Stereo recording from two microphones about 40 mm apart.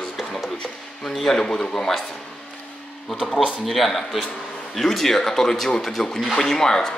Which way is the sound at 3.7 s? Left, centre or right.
Centre.